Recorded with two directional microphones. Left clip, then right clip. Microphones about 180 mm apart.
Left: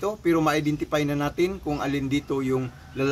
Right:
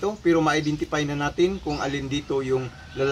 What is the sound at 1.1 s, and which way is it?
Speech, 25° left (ahead or behind).